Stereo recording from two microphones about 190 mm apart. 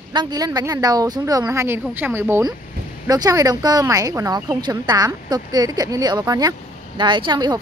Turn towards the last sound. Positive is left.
turn(degrees=-25)  # may be behind; listen again after turning